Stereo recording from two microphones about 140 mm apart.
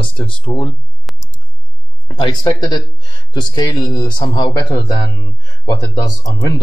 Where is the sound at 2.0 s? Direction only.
30° left (ahead or behind).